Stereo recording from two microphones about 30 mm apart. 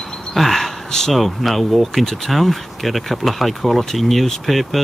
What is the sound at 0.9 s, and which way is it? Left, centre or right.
Speech, centre.